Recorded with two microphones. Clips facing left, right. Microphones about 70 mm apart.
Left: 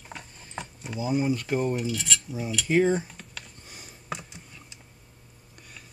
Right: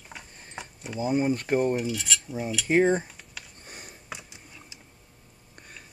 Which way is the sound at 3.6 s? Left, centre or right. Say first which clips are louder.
Right 2 dB; right.